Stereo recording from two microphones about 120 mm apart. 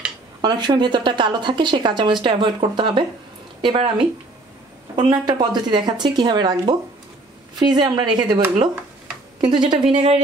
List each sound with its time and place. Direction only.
0.4 s a woman's voice: 35° right (ahead or behind)
9.4 s a woman's voice: 40° right (ahead or behind); by 10.2 s 60° right (ahead or behind)